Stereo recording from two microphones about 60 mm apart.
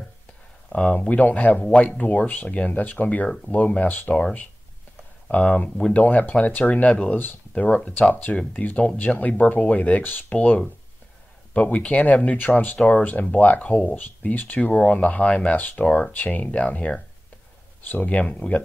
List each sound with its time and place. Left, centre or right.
0.7 s speech: centre
0.9 s speech: left
5.9 s speech: left
11.5 s speech: left
15.5 s speech: left
15.8 s speech: centre
16.1 s speech: left
17.8 s speech: left
18.1 s speech: left